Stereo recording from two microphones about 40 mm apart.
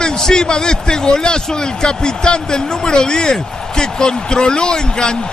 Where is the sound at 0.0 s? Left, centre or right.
Centre.